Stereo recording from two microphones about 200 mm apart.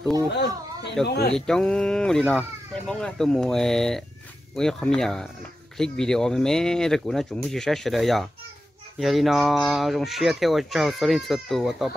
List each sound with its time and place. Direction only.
0.3 s speech: 55° left (ahead or behind)
1.4 s speech: centre (ahead or behind)